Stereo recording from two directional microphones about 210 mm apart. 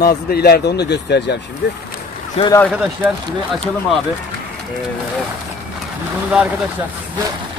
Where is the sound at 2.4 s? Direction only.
30° left (ahead or behind).